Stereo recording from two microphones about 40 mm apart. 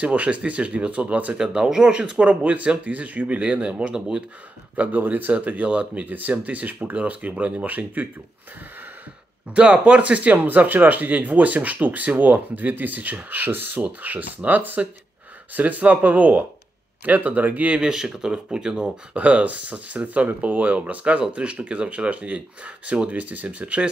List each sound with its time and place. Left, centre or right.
0.0 s speech: right
1.3 s speech: right
2.0 s speech: right
4.7 s speech: right
5.3 s speech: right
6.0 s speech: right
6.3 s speech: right
9.5 s speech: right
14.0 s speech: right
17.8 s speech: centre
19.1 s speech: right